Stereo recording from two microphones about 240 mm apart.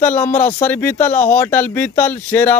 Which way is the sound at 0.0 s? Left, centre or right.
Centre.